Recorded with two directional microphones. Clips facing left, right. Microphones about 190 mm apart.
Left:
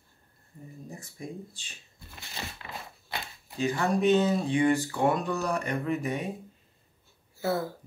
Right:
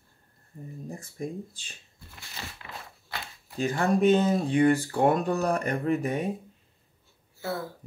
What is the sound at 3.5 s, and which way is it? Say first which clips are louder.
Speech: right 2 dB; 45° right (ahead or behind).